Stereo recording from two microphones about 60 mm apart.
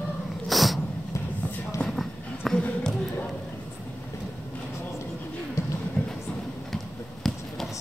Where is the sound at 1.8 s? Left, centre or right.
Centre.